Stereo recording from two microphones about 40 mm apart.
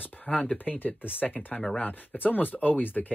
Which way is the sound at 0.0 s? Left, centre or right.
Left.